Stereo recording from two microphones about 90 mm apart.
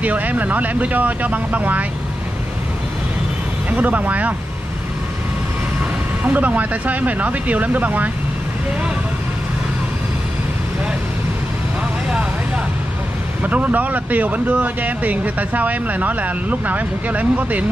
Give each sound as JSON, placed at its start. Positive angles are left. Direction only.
{"t": 0.0, "sound": "speech", "side_deg": -15}
{"t": 3.7, "sound": "speech", "side_deg": -20}
{"t": 6.2, "sound": "speech", "side_deg": -15}
{"t": 13.4, "sound": "speech", "side_deg": -15}